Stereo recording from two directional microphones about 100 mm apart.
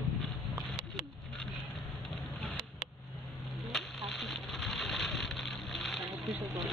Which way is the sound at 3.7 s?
Centre (ahead or behind).